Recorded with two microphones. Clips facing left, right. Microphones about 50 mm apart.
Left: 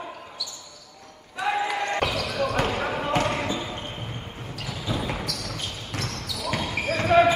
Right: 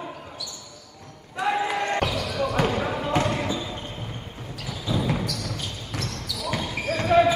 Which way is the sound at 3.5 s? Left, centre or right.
Left.